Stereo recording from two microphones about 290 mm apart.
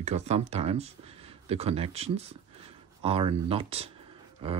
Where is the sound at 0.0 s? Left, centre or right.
Right.